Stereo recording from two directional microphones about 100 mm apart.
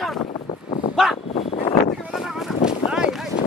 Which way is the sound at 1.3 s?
90° left.